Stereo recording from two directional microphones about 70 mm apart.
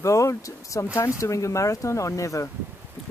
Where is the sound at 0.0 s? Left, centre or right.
Left.